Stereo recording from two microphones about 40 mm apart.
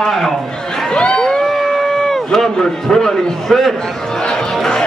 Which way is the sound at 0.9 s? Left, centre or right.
Left.